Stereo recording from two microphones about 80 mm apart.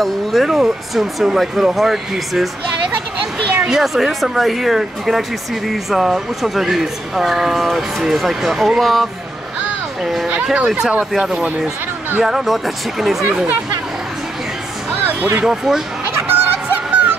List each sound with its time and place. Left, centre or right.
0.0 s speech: centre
3.6 s speech: centre
15.0 s music: right
15.4 s speech: centre
16.1 s music: right